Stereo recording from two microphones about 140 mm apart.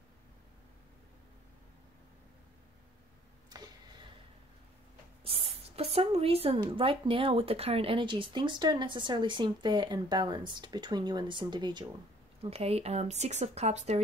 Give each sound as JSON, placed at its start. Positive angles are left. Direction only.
{"t": 3.4, "sound": "a sound", "side_deg": -30}
{"t": 5.2, "sound": "a woman's voice", "side_deg": -40}
{"t": 12.4, "sound": "speech", "side_deg": -45}